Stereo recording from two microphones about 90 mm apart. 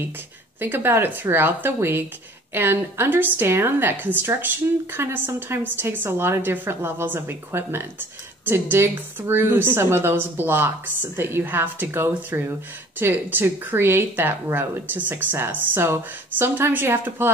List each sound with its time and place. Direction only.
0.6 s a woman's voice: 25° right (ahead or behind)